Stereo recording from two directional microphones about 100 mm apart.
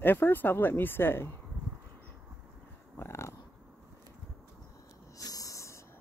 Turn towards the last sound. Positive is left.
turn(degrees=30)  # may be behind; listen again after turning